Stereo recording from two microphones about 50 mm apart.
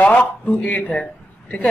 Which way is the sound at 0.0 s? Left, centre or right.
Left.